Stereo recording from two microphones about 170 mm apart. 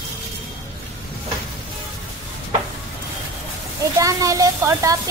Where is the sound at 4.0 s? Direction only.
20° right (ahead or behind).